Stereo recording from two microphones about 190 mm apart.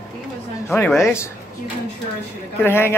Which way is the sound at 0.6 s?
10° left (ahead or behind).